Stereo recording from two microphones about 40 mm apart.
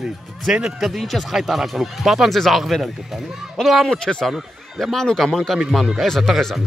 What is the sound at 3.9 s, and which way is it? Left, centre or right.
Speech, centre.